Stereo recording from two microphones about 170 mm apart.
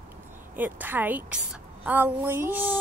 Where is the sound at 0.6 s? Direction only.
10° right (ahead or behind).